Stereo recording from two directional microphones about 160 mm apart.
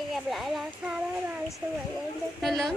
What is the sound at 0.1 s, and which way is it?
Speech, centre (ahead or behind).